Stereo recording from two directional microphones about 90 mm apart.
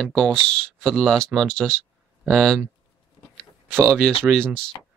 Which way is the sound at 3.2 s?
65° left (ahead or behind).